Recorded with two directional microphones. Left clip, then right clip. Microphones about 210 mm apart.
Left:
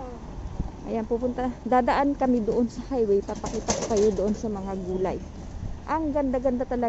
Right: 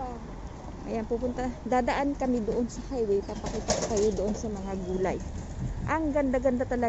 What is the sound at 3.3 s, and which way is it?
Speech, 50° left (ahead or behind).